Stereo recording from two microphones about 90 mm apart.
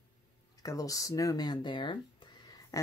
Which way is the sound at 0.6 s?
40° left (ahead or behind).